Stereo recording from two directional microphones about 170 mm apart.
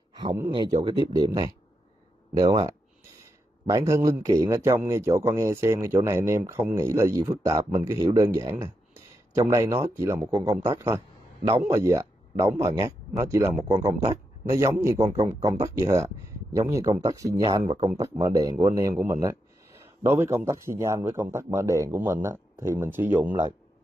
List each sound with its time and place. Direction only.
0.5 s speech: 30° right (ahead or behind)